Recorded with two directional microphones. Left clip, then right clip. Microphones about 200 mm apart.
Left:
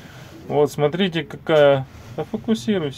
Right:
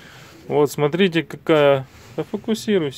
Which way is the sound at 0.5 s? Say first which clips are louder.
Even; 45° right (ahead or behind).